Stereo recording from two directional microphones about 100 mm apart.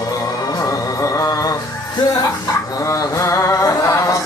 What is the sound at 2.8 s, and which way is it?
Music, 30° left (ahead or behind).